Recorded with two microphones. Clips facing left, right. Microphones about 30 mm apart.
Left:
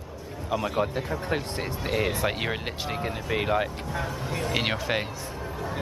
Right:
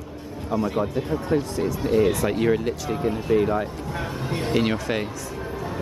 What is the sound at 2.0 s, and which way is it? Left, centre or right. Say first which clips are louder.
Speech: right 6 dB; left.